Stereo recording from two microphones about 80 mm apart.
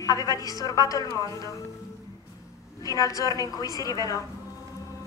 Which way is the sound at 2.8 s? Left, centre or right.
Left.